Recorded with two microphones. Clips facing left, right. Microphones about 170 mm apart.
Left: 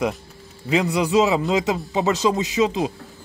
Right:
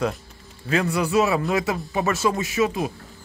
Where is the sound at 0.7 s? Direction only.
15° left (ahead or behind).